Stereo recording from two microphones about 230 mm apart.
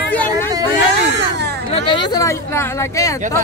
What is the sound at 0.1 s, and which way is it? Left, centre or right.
Vehicle, centre.